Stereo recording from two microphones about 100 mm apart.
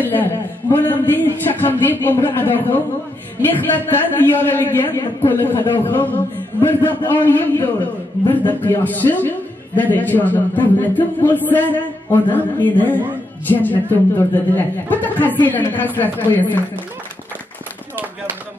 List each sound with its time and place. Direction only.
0.1 s a man's voice: 20° left (ahead or behind)